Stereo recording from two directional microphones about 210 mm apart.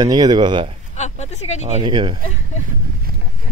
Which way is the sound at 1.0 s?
30° left (ahead or behind).